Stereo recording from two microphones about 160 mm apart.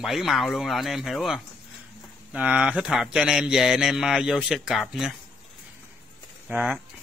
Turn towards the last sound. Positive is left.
turn(degrees=-10)  # may be behind; listen again after turning